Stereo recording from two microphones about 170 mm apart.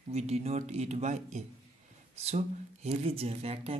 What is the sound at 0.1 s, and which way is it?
Speech, 40° right (ahead or behind).